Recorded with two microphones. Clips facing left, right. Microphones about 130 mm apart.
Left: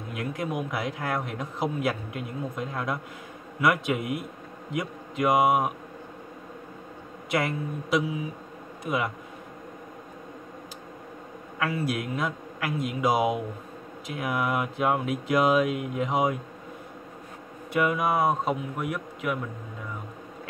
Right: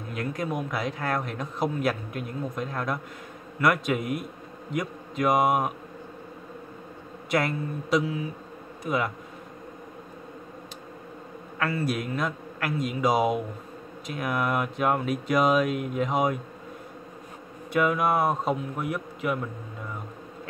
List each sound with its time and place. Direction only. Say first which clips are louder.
0.1 s a man's voice: right 1 dB; centre (ahead or behind)
7.2 s a man's voice: right 1 dB; centre (ahead or behind)
11.6 s a man's voice: right 1 dB; 5° left (ahead or behind)
17.7 s a man's voice: right 1 dB; centre (ahead or behind)